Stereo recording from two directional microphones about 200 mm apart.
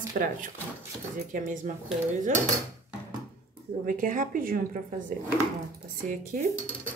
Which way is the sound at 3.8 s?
40° right (ahead or behind).